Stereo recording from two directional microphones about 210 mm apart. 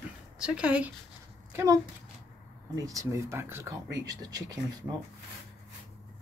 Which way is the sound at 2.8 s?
15° right (ahead or behind).